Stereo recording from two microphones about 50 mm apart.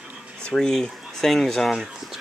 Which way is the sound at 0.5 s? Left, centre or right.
Centre.